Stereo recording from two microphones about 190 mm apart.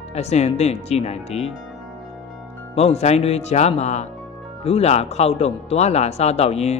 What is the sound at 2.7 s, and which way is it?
Speech, 35° left (ahead or behind).